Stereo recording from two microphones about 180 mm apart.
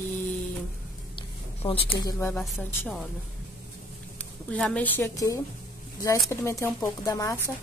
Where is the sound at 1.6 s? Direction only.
30° left (ahead or behind).